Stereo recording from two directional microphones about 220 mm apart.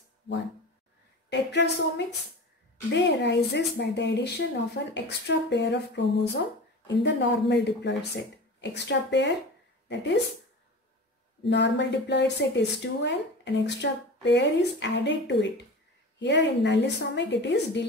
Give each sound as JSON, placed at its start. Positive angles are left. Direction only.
{"t": 1.3, "sound": "speech", "side_deg": 50}
{"t": 11.4, "sound": "speech", "side_deg": 55}